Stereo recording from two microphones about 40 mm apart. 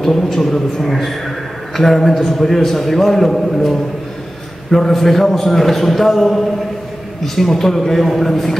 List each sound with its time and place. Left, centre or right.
0.0 s a man's voice: centre